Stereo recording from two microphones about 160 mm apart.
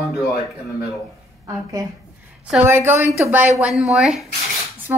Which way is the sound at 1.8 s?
25° right (ahead or behind).